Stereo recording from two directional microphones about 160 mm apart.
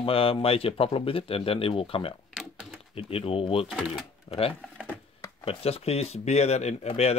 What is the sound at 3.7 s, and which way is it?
Speech, 5° right (ahead or behind).